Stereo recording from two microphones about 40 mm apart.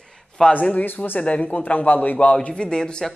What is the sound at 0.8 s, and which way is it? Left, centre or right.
Speech, left.